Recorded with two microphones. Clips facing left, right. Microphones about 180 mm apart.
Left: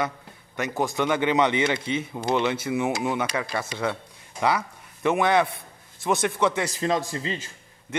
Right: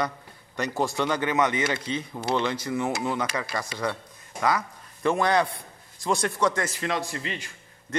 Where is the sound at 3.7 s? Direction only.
10° left (ahead or behind).